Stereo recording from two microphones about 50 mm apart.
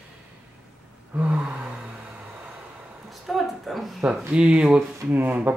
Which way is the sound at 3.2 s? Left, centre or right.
Centre.